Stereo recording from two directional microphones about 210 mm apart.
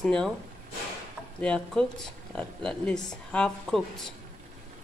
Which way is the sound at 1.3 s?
5° left (ahead or behind).